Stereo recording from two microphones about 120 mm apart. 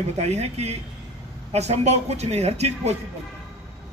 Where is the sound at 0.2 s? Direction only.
65° right (ahead or behind).